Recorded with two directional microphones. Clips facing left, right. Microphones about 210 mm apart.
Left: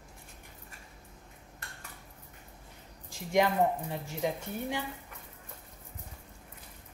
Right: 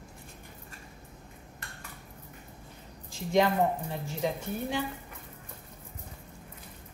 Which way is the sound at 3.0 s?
15° left (ahead or behind).